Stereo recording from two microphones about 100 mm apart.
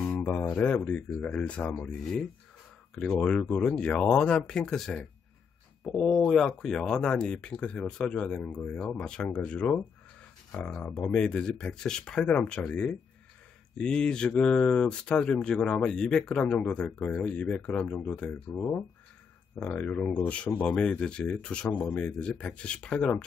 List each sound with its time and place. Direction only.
0.2 s speech: 30° left (ahead or behind); by 5.0 s 5° left (ahead or behind)
6.2 s speech: 5° left (ahead or behind)